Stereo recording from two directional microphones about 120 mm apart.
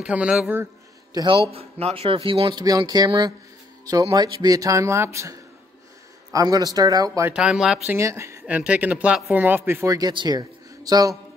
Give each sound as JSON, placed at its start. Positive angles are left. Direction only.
{"t": 0.0, "sound": "speech", "side_deg": -10}
{"t": 1.1, "sound": "a man's voice", "side_deg": -45}
{"t": 1.5, "sound": "speech", "side_deg": -55}
{"t": 7.2, "sound": "speech", "side_deg": -5}
{"t": 7.9, "sound": "speech", "side_deg": -25}
{"t": 8.5, "sound": "speech", "side_deg": -10}
{"t": 9.8, "sound": "speech", "side_deg": -35}